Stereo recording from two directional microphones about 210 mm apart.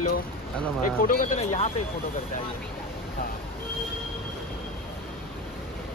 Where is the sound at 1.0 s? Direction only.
40° left (ahead or behind).